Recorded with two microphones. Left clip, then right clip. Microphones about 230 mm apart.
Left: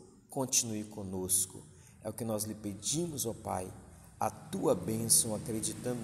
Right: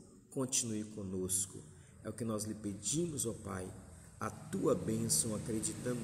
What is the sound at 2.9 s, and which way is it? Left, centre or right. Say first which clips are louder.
Speech: left 1 dB; left.